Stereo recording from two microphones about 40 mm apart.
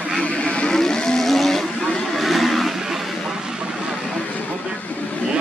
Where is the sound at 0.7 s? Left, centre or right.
Centre.